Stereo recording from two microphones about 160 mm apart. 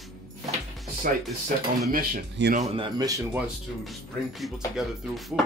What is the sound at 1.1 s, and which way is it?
Speech, 60° right (ahead or behind).